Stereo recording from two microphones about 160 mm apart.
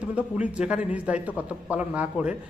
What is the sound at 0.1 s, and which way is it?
A man's voice, 10° right (ahead or behind).